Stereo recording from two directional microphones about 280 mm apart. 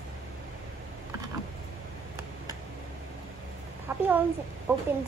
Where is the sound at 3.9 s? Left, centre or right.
Centre.